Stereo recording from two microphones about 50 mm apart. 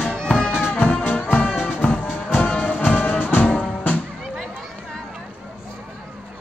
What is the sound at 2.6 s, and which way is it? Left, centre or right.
Music, left.